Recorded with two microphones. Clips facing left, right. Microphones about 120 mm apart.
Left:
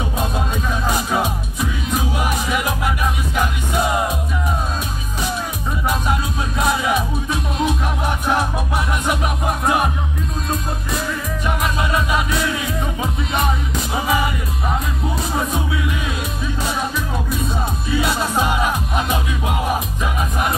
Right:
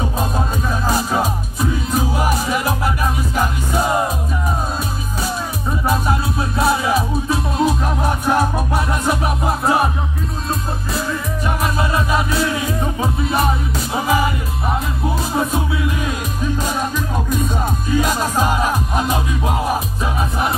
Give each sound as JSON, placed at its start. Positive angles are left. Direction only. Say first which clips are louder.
{"t": 0.8, "sound": "music", "louder": "right 2 dB", "side_deg": -40}
{"t": 6.6, "sound": "music", "louder": "right 2 dB", "side_deg": -35}
{"t": 11.4, "sound": "music", "louder": "right 1 dB", "side_deg": -35}
{"t": 15.3, "sound": "music", "louder": "right 3 dB", "side_deg": -30}
{"t": 17.8, "sound": "music", "louder": "right 2 dB", "side_deg": -40}